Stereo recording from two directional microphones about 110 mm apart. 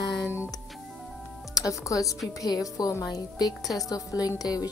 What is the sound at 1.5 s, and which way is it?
Speech, 30° left (ahead or behind).